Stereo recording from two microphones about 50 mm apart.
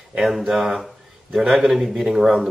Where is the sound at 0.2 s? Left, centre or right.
Centre.